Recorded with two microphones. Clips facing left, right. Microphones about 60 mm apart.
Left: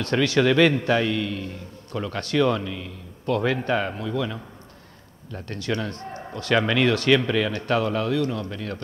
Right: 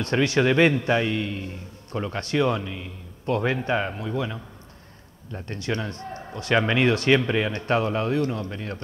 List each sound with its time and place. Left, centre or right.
0.0 s speech: right
3.3 s speech: right
3.6 s speech: centre
5.3 s speech: right